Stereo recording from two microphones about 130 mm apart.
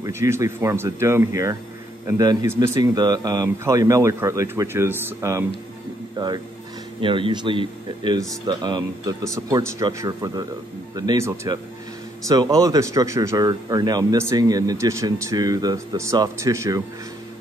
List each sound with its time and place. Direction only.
0.0 s speech: 20° right (ahead or behind)
6.1 s speech: 30° right (ahead or behind)